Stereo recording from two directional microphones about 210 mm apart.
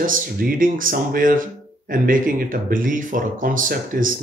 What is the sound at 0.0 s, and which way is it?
Speech, 40° right (ahead or behind).